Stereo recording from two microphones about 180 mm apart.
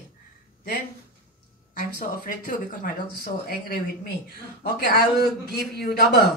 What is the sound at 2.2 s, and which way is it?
Speech, 50° left (ahead or behind).